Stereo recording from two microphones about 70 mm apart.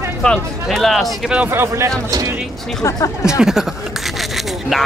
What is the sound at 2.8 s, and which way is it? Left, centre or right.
Speech, left.